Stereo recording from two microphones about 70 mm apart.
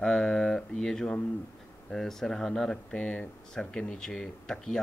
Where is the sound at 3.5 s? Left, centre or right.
Centre.